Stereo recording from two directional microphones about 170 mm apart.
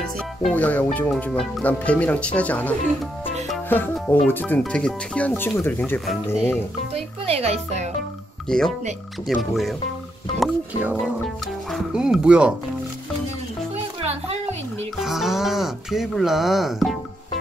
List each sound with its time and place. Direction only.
0.0 s speech: 5° left (ahead or behind)
6.9 s speech: 35° right (ahead or behind)
8.5 s speech: 5° left (ahead or behind)
14.0 s a sound: 40° right (ahead or behind)
15.0 s speech: centre (ahead or behind)